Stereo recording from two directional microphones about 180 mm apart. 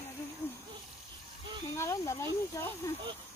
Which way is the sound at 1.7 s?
15° left (ahead or behind).